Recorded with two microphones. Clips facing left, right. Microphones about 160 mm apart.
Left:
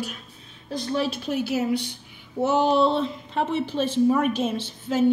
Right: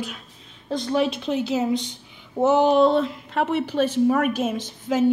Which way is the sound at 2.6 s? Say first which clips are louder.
Right 3 dB; 50° right (ahead or behind).